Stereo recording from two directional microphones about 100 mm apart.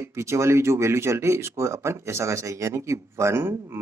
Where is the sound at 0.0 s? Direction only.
25° right (ahead or behind).